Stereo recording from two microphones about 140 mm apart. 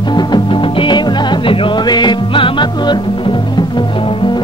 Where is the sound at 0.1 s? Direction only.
30° left (ahead or behind).